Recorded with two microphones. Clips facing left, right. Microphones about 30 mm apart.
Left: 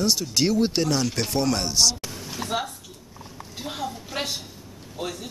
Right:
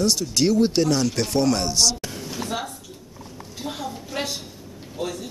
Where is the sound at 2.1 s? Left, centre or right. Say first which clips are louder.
Even; centre.